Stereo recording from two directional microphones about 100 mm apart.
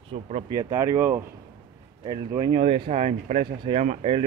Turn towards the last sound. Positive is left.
turn(degrees=-80)